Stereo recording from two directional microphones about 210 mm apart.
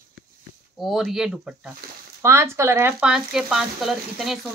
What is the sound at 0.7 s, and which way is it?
Speech, centre (ahead or behind).